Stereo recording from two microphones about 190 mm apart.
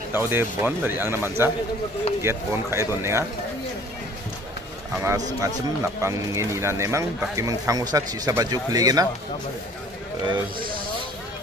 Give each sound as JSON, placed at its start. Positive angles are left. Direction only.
{"t": 0.1, "sound": "speech", "side_deg": -10}
{"t": 4.9, "sound": "speech", "side_deg": -15}
{"t": 10.2, "sound": "speech", "side_deg": -25}